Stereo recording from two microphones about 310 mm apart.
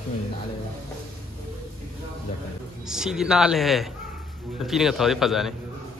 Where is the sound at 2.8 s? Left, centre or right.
Centre.